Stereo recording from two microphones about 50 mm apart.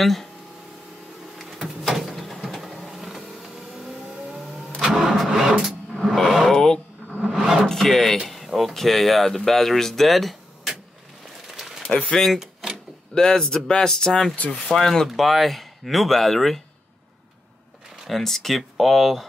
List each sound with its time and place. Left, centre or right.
0.0 s speech: centre
1.6 s printer: centre
2.9 s vehicle: centre
6.1 s a sound: centre
7.0 s filing: centre
7.3 s wood: centre
7.6 s wood: centre
8.5 s speech: centre
11.4 s a sound: centre
12.1 s speech: centre
14.3 s speech: left
14.7 s speech: centre
18.0 s speech: centre